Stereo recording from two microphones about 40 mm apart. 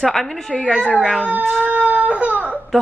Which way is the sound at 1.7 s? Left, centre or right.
Right.